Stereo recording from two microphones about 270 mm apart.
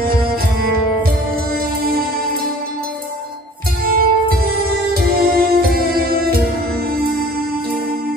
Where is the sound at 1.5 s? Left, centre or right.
Right.